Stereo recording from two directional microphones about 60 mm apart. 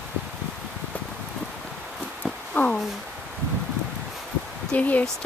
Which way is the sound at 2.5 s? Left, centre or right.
Left.